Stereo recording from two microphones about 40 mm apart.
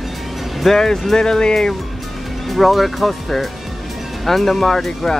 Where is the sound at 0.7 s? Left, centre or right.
Centre.